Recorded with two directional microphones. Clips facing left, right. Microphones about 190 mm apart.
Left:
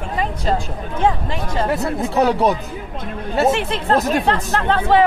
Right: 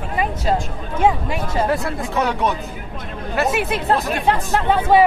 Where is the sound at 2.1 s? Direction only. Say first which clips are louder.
Left 4 dB; 35° left (ahead or behind).